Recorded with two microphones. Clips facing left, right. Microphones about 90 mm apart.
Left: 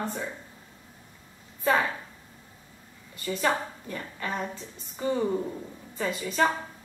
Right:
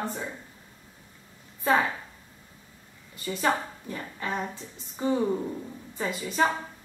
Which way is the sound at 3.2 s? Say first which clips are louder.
Even; 15° right (ahead or behind).